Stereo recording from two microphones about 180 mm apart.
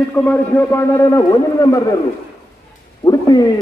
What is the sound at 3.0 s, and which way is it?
Speech, 20° left (ahead or behind).